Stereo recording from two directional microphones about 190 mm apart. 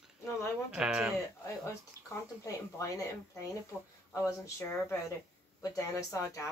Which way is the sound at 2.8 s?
15° left (ahead or behind).